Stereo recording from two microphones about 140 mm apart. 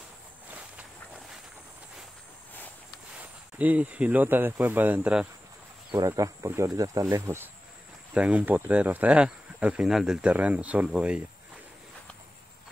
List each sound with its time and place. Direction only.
0.6 s train: 5° right (ahead or behind)
3.2 s speech: 10° right (ahead or behind)
5.9 s speech: 25° right (ahead or behind)
8.1 s speech: 10° right (ahead or behind)